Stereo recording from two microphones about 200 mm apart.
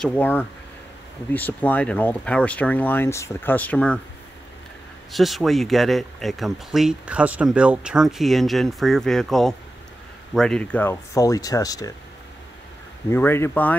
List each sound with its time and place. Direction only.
0.0 s speech: 5° left (ahead or behind)
5.1 s speech: centre (ahead or behind); by 11.9 s 20° left (ahead or behind)
13.1 s speech: 10° left (ahead or behind)